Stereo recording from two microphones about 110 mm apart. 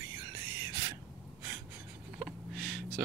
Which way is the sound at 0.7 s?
35° right (ahead or behind).